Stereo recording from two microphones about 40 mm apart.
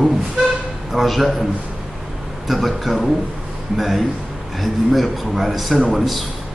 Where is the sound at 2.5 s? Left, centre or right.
Centre.